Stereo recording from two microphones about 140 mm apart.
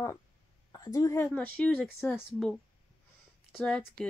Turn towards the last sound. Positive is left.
turn(degrees=5)  # may be behind; listen again after turning